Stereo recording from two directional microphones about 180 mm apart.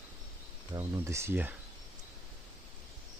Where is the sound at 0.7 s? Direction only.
15° right (ahead or behind).